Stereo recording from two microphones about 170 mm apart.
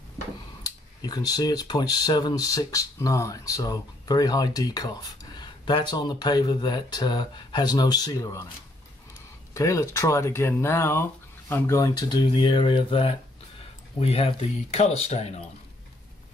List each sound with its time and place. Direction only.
0.7 s speech: 25° left (ahead or behind)
9.5 s speech: 20° left (ahead or behind); by 15.4 s 40° left (ahead or behind)